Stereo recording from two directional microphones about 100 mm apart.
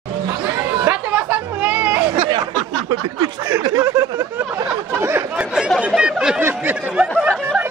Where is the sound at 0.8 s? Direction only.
15° right (ahead or behind).